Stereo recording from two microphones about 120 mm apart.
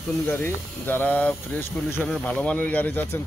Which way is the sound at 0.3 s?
15° left (ahead or behind).